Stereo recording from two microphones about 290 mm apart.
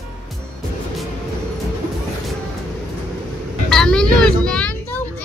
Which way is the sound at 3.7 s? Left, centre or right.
Centre.